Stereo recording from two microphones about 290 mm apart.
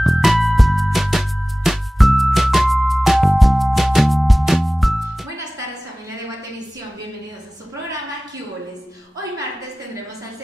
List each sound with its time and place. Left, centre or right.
0.0 s music: centre